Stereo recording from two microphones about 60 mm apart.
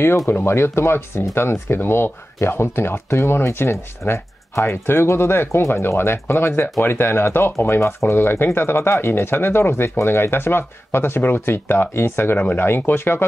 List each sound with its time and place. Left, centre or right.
0.3 s speech: left